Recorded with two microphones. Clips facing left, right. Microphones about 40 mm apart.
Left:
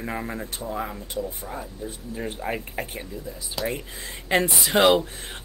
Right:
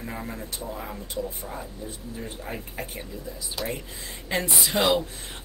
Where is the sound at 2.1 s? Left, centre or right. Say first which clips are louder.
Left 8 dB; left.